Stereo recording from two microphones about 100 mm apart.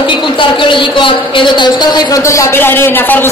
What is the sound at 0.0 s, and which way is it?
A woman's voice, 55° left (ahead or behind).